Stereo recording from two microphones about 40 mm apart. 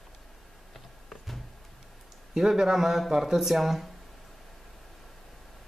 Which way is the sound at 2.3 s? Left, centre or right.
Centre.